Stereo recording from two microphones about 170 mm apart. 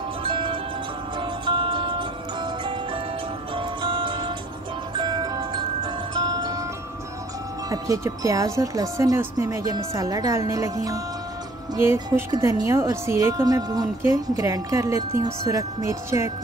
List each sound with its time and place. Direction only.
0.2 s music: 30° right (ahead or behind)
7.7 s speech: 20° right (ahead or behind)